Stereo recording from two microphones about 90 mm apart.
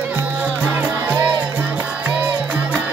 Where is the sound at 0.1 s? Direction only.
20° right (ahead or behind).